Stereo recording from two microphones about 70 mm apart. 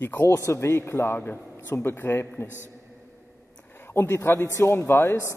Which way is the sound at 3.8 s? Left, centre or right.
Left.